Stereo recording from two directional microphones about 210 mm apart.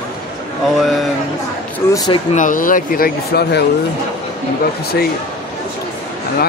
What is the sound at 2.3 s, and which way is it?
Speech, 40° left (ahead or behind).